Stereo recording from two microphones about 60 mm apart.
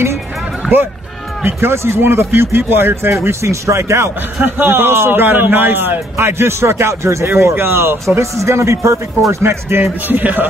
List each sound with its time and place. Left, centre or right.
0.6 s music: centre
1.4 s a man's voice: right
3.3 s a man's voice: right
4.4 s a man's voice: right
8.2 s speech: right
9.4 s a man's voice: right
10.0 s a man's voice: right